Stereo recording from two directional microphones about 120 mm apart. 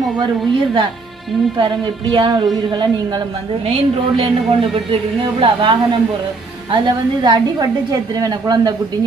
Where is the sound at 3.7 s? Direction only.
50° right (ahead or behind).